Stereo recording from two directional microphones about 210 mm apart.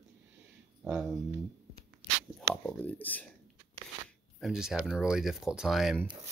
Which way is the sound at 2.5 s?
5° left (ahead or behind).